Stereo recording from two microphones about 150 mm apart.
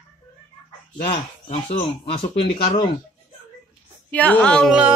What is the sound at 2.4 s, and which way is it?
Speech, 30° left (ahead or behind).